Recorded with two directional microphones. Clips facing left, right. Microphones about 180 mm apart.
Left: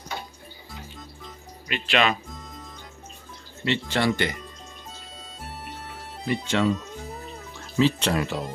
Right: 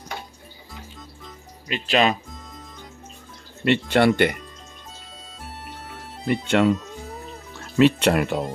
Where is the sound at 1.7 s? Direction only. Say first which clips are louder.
Right 3 dB; 35° right (ahead or behind).